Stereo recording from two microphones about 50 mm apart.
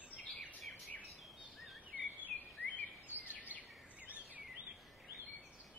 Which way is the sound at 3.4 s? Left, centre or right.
Right.